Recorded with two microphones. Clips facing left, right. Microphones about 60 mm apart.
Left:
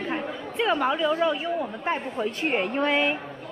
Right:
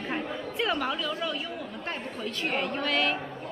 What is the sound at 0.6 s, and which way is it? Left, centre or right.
A woman's voice, centre.